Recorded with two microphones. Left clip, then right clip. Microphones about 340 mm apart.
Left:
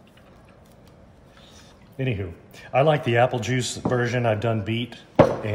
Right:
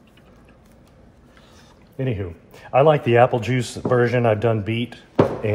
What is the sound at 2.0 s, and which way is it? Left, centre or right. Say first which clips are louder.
Speech: right 2 dB; centre.